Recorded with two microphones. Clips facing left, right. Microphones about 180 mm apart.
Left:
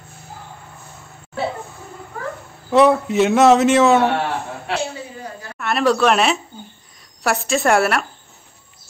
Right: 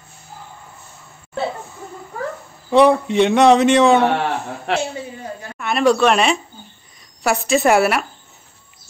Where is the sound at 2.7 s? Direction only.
Centre (ahead or behind).